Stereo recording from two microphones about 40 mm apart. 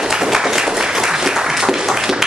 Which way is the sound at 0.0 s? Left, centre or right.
Centre.